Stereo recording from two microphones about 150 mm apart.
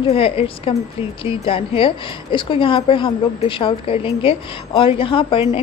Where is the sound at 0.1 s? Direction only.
40° left (ahead or behind).